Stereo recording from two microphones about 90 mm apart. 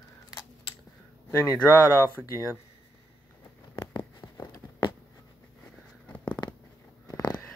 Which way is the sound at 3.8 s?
55° left (ahead or behind).